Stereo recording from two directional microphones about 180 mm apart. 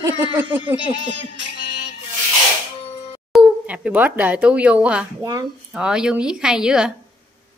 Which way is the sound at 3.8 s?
10° right (ahead or behind).